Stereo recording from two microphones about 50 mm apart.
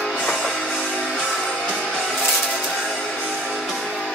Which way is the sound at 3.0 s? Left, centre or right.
Left.